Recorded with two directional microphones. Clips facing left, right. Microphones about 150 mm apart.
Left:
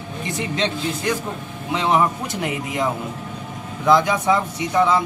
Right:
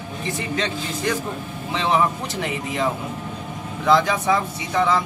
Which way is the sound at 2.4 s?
15° left (ahead or behind).